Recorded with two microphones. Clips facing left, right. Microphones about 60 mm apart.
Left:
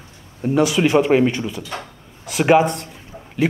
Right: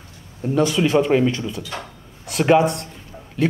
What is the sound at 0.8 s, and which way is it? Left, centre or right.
Speech, left.